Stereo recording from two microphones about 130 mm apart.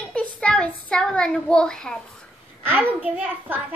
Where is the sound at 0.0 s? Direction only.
10° left (ahead or behind).